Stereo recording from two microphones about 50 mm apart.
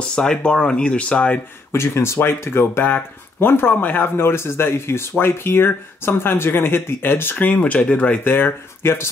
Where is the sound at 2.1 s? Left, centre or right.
Left.